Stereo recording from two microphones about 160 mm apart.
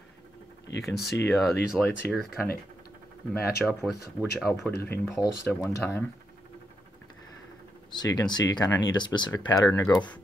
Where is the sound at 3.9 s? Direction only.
90° left.